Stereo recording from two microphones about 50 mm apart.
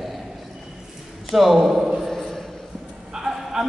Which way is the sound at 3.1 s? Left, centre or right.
Centre.